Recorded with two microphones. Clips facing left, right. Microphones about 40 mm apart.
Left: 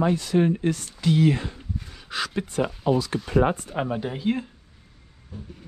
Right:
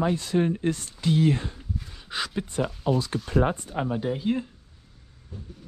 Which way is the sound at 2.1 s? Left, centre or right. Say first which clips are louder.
Left 2 dB; left.